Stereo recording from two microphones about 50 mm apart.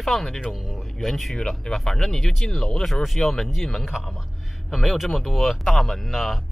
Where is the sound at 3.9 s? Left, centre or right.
Centre.